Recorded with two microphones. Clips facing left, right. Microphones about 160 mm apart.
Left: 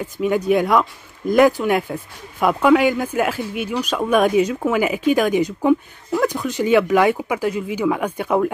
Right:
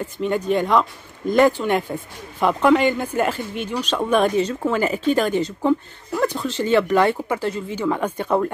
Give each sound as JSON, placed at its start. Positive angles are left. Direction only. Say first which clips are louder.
{"t": 0.0, "sound": "speech", "louder": "left 3 dB", "side_deg": 10}